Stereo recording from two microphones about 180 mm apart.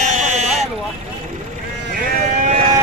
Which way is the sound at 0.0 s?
40° right (ahead or behind).